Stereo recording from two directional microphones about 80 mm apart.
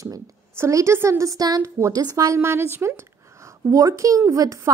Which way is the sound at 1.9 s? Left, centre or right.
Right.